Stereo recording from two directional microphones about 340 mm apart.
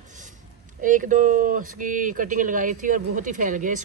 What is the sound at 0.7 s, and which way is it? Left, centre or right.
Speech, right.